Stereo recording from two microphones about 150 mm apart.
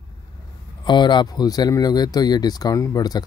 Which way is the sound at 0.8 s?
30° left (ahead or behind).